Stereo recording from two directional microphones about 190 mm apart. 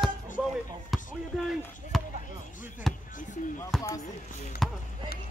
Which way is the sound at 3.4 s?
40° left (ahead or behind).